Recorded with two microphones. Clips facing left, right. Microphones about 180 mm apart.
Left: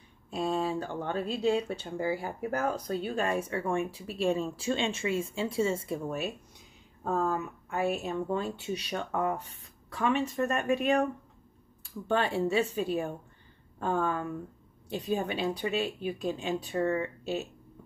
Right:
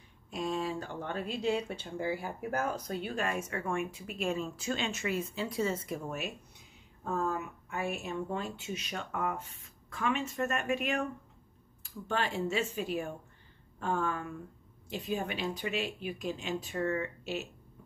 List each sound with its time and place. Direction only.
0.3 s speech: 30° left (ahead or behind)